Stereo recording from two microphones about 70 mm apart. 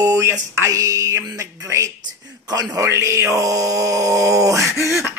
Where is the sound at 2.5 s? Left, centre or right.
Right.